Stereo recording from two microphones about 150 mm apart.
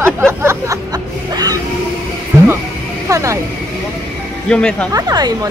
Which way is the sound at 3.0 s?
20° right (ahead or behind).